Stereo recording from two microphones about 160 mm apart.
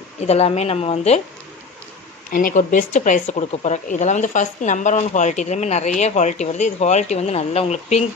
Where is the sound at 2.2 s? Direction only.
60° left (ahead or behind).